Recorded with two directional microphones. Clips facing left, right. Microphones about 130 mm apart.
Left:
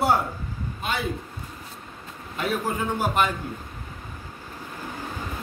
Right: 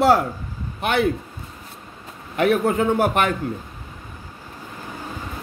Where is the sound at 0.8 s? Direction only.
65° right (ahead or behind).